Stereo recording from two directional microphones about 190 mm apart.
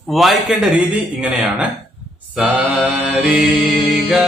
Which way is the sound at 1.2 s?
5° right (ahead or behind).